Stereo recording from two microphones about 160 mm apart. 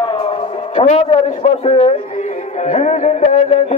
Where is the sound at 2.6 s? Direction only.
45° left (ahead or behind).